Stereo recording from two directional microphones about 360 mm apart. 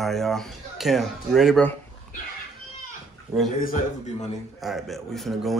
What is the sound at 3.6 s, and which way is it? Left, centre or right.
Speech, left.